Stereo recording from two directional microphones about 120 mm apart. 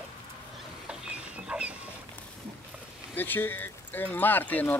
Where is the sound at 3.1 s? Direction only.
15° left (ahead or behind).